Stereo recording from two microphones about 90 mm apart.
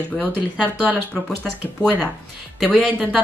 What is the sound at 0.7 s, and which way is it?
Speech, 20° right (ahead or behind).